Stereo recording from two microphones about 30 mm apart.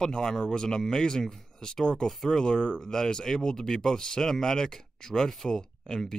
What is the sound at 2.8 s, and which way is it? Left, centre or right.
Speech, centre.